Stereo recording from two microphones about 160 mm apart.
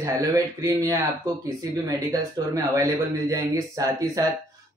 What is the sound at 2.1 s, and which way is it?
Speech, 20° right (ahead or behind).